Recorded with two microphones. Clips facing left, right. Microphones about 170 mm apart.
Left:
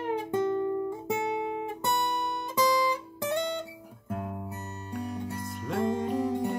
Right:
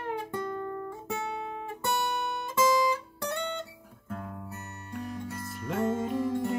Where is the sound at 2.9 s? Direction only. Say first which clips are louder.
Left 2 dB; 15° left (ahead or behind).